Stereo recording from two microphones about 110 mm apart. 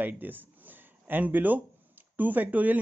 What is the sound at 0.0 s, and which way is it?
Speech, 15° right (ahead or behind).